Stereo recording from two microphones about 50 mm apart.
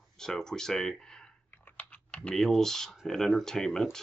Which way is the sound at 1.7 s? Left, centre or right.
Left.